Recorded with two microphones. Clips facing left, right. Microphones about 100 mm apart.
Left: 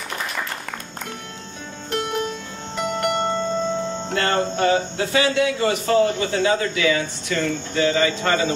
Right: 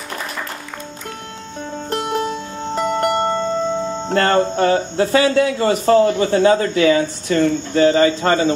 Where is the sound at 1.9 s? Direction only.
35° right (ahead or behind).